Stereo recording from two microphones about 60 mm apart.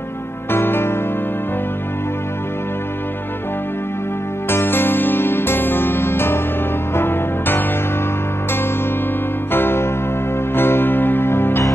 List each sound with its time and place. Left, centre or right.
0.5 s music: left
4.5 s music: left
9.5 s music: left